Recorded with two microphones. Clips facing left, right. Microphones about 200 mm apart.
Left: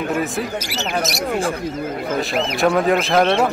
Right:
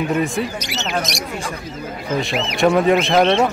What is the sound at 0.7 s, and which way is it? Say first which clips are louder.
Speech: even; 5° left (ahead or behind).